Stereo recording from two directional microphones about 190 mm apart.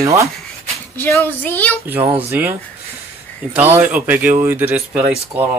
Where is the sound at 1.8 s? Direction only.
10° right (ahead or behind).